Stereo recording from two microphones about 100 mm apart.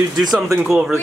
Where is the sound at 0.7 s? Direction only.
5° right (ahead or behind).